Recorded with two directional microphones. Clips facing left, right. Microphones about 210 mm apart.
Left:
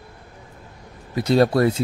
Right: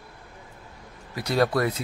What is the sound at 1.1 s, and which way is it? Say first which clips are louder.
Speech: left 6 dB; 25° left (ahead or behind).